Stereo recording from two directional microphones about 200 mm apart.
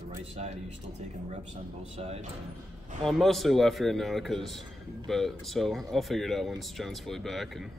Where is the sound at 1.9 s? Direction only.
30° right (ahead or behind).